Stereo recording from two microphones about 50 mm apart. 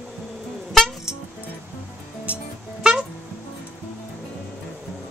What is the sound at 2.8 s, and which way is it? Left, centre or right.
Music, centre.